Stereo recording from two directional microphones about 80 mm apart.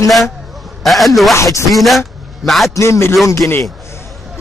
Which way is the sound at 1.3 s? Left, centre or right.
Left.